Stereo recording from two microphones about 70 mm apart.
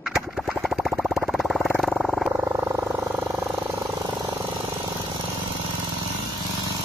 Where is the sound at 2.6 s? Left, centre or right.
Right.